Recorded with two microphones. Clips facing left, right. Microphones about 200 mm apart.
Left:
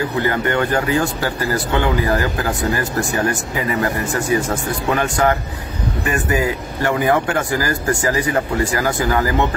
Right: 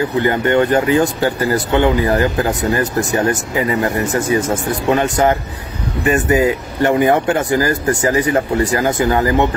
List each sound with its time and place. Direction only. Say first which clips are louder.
0.2 s speech: right 5 dB; 25° right (ahead or behind)